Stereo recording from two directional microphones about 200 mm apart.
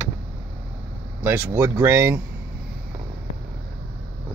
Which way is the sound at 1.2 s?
10° right (ahead or behind).